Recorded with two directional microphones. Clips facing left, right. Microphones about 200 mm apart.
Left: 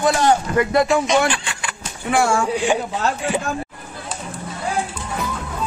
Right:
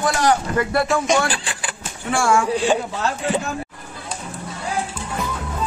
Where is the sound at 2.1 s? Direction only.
20° left (ahead or behind).